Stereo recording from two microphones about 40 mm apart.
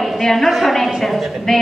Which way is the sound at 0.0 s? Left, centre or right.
Centre.